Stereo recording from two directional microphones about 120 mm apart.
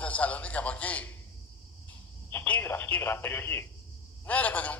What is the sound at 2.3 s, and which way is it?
Telephone, 15° left (ahead or behind).